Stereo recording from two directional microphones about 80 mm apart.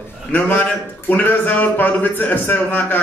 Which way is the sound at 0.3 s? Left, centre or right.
Centre.